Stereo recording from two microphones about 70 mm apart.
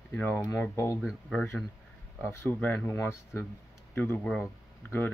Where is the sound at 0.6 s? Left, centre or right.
Left.